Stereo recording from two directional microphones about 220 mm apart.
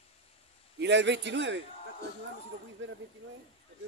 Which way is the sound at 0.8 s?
50° right (ahead or behind).